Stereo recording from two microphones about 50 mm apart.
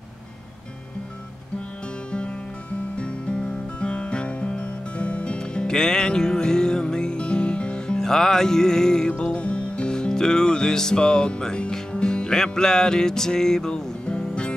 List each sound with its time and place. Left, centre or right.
2.0 s music: left